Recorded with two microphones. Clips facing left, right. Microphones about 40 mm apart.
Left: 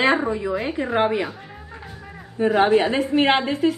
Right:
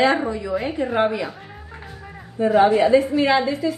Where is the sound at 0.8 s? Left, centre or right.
Left.